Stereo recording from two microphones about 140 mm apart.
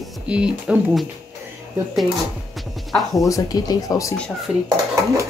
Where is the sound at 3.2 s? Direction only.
25° left (ahead or behind).